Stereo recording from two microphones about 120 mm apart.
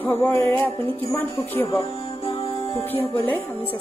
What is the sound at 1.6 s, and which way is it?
Music, 55° left (ahead or behind).